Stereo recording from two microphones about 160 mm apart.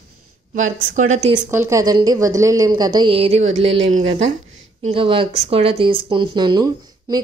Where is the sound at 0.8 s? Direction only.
50° right (ahead or behind).